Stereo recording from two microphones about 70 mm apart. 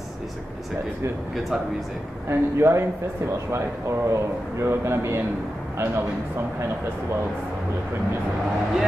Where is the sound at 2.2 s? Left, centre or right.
Right.